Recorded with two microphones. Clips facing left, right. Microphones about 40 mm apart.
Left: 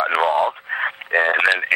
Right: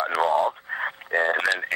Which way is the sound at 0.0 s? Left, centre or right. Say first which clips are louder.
Left 4 dB; left.